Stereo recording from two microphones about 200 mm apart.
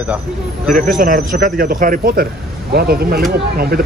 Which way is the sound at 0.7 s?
45° right (ahead or behind).